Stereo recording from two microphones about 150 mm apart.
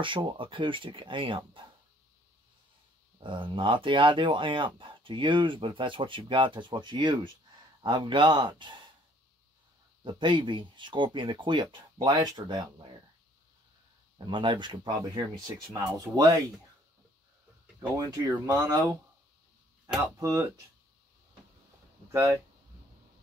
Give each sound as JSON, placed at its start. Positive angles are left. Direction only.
{"t": 0.0, "sound": "speech", "side_deg": -30}
{"t": 3.2, "sound": "speech", "side_deg": -30}
{"t": 10.0, "sound": "speech", "side_deg": -30}
{"t": 14.1, "sound": "speech", "side_deg": -30}
{"t": 17.9, "sound": "speech", "side_deg": -25}
{"t": 20.2, "sound": "speech", "side_deg": -20}